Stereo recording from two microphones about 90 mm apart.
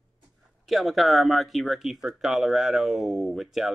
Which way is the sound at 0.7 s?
Centre (ahead or behind).